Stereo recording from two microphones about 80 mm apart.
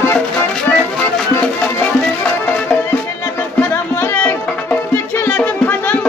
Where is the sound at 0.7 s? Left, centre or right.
Centre.